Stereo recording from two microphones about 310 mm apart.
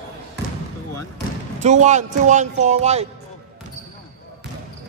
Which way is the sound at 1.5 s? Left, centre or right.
Right.